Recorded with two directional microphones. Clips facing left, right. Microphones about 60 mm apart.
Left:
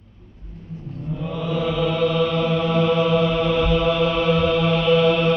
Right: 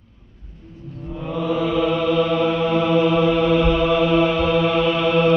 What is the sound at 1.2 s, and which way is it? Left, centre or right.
Mantra, centre.